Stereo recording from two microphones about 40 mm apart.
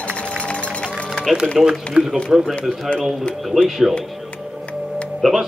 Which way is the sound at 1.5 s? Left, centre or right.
Centre.